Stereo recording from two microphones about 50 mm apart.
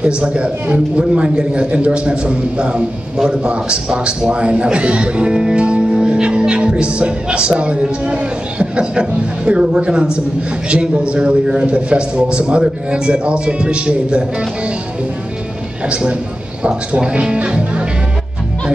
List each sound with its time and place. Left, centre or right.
0.0 s a man's voice: right
15.9 s a man's voice: right